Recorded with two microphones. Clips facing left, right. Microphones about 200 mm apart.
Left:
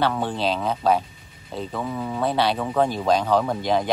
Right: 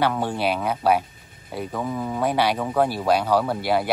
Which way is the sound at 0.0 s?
10° right (ahead or behind).